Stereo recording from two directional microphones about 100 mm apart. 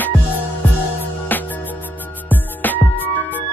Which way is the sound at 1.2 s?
20° left (ahead or behind).